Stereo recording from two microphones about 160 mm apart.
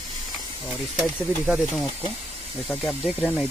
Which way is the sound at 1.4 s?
Centre (ahead or behind).